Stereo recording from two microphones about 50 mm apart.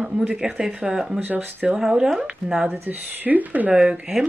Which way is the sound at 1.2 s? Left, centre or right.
Right.